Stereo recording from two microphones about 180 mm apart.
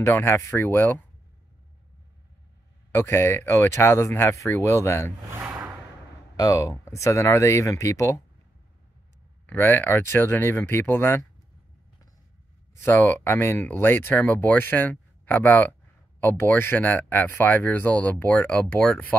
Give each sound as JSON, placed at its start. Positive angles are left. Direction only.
{"t": 0.0, "sound": "speech", "side_deg": 15}
{"t": 2.9, "sound": "speech", "side_deg": 15}
{"t": 5.3, "sound": "a sound", "side_deg": -10}
{"t": 6.3, "sound": "speech", "side_deg": 20}
{"t": 9.5, "sound": "speech", "side_deg": 10}
{"t": 12.7, "sound": "speech", "side_deg": 15}